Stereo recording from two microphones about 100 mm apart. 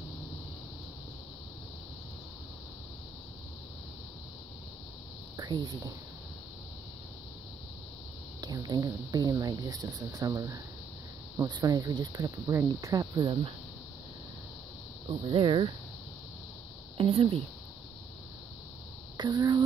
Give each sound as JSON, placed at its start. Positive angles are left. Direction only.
{"t": 5.4, "sound": "speech", "side_deg": -45}
{"t": 8.4, "sound": "speech", "side_deg": -40}
{"t": 11.4, "sound": "speech", "side_deg": -45}
{"t": 12.8, "sound": "cricket", "side_deg": -40}
{"t": 15.0, "sound": "speech", "side_deg": -60}
{"t": 16.9, "sound": "speech", "side_deg": -65}
{"t": 19.1, "sound": "a sound", "side_deg": -45}